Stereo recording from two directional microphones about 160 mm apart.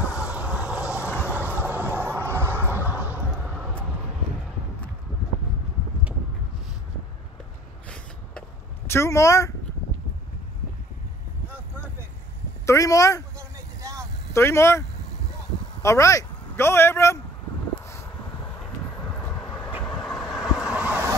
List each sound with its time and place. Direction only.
0.1 s vehicle: 5° right (ahead or behind)
7.9 s a sound: 10° left (ahead or behind)
12.6 s speech: 20° left (ahead or behind)
13.4 s vehicle: 20° right (ahead or behind)
14.3 s speech: 15° left (ahead or behind)
19.9 s vehicle: 5° left (ahead or behind); by 21.2 s 15° right (ahead or behind)